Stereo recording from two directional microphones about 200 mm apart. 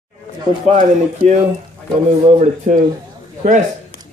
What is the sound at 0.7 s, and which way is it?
Speech, 35° right (ahead or behind).